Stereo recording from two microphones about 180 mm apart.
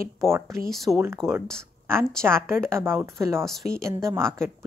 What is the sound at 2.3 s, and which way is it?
A woman's voice, 15° right (ahead or behind).